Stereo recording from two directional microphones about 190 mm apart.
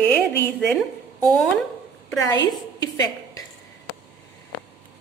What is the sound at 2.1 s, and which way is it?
Speech, 20° left (ahead or behind).